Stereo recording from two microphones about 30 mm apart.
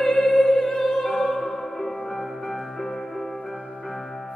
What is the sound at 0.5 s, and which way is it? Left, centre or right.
Opera, centre.